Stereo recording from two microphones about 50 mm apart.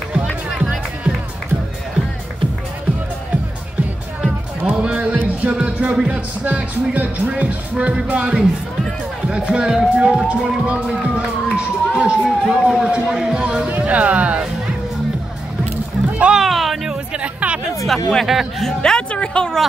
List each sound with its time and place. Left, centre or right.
0.1 s music: right
4.6 s music: right
5.4 s speech: right
12.3 s speech: centre
12.6 s speech: centre
16.1 s a sound: right
16.3 s music: centre
16.9 s music: right
17.8 s speech: centre
18.8 s a sound: centre